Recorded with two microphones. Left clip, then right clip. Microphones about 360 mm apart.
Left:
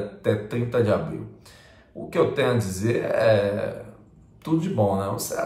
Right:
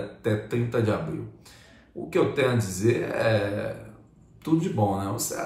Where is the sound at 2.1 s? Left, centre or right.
Centre.